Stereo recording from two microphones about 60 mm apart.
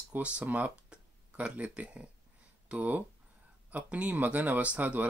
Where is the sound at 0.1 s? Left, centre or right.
Right.